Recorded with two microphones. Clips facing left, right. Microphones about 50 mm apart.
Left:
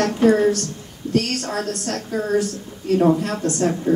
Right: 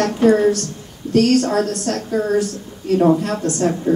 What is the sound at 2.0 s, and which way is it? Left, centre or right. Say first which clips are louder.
Speech: right 2 dB; centre.